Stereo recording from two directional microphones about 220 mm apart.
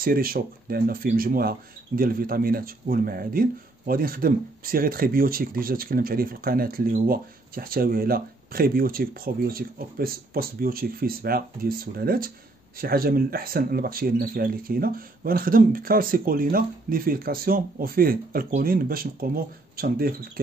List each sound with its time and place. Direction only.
0.0 s speech: 40° right (ahead or behind)